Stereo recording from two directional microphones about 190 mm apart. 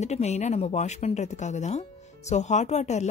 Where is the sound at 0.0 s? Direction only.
35° left (ahead or behind).